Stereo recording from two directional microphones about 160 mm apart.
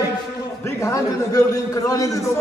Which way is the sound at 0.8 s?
20° left (ahead or behind).